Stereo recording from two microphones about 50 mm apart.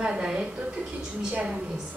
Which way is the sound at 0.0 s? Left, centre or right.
Centre.